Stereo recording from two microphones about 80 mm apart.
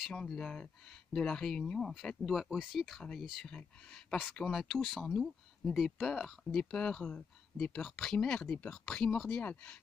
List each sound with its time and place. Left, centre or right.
0.1 s speech: centre
3.4 s speech: centre
9.3 s speech: left